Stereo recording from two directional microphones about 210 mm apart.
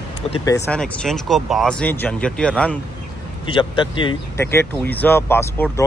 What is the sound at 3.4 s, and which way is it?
Speech, 25° left (ahead or behind).